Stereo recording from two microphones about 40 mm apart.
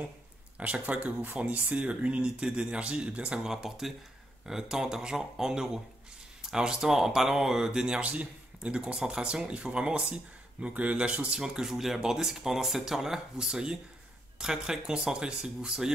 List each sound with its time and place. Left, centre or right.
0.6 s speech: right
3.4 s speech: centre
7.6 s speech: centre
8.0 s speech: right
10.7 s speech: right
11.3 s speech: centre